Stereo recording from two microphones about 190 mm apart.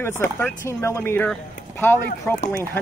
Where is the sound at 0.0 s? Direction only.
10° left (ahead or behind).